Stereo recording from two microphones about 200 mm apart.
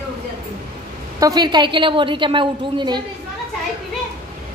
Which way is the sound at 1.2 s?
20° right (ahead or behind).